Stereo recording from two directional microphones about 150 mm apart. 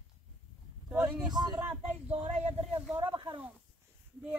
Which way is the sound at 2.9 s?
30° right (ahead or behind).